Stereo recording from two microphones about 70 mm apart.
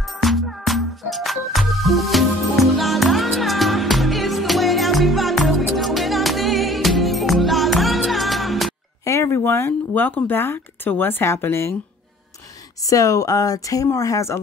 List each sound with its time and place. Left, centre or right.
0.0 s music: centre
9.0 s speech: left
12.8 s speech: left